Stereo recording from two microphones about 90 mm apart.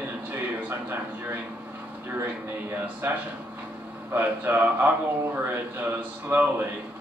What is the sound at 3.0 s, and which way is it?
Speech, 25° right (ahead or behind).